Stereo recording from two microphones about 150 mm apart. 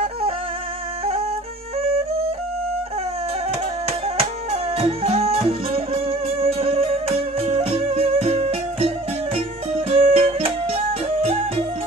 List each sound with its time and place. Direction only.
4.2 s music: 40° right (ahead or behind)